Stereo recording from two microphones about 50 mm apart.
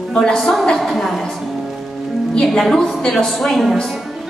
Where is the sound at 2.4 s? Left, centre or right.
Centre.